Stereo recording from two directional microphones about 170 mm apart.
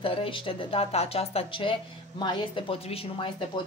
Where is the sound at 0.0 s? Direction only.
30° left (ahead or behind).